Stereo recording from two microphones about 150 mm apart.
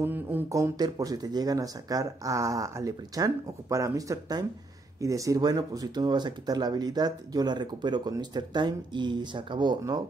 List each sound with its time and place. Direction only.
0.0 s speech: 15° right (ahead or behind)